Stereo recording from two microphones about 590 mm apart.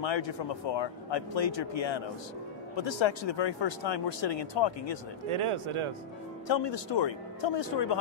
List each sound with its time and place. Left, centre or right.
0.0 s speech: left
2.7 s speech: left
5.3 s speech: right
6.4 s speech: left